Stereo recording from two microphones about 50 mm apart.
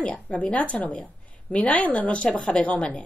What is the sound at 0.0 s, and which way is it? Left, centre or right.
A woman's voice, left.